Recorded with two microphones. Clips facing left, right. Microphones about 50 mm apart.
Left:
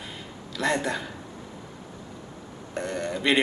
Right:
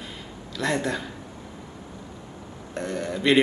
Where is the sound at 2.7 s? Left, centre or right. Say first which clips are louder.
Even; centre.